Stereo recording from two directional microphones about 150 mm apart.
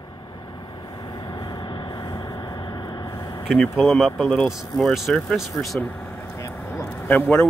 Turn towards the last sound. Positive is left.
turn(degrees=10)  # may be behind; listen again after turning